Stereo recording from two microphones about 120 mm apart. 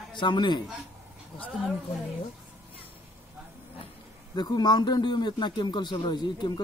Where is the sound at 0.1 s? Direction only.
40° left (ahead or behind).